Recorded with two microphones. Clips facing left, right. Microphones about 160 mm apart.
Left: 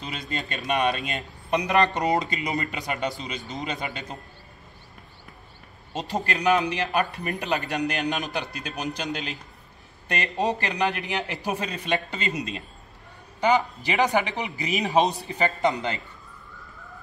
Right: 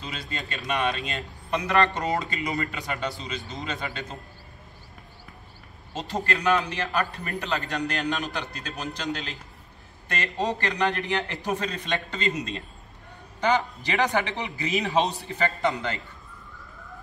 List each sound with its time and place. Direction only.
0.0 s a man's voice: 20° left (ahead or behind)
5.9 s a man's voice: 15° left (ahead or behind)